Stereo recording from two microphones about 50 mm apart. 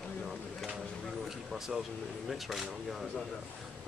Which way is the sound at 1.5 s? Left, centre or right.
Centre.